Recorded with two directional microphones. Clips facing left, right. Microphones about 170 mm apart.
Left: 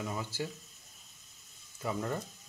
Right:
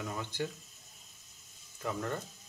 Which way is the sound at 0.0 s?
5° left (ahead or behind).